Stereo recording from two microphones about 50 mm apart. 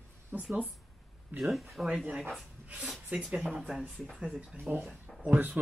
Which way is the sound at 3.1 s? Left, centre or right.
Right.